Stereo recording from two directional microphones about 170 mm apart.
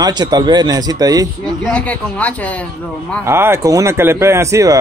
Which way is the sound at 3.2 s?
15° right (ahead or behind).